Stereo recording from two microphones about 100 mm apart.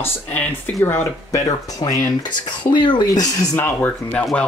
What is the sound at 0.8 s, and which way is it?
Speech, 30° left (ahead or behind).